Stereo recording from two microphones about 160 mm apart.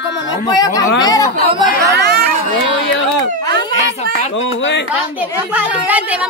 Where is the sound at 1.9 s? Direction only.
90° right.